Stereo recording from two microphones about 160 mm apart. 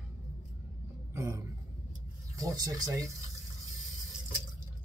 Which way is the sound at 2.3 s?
20° right (ahead or behind).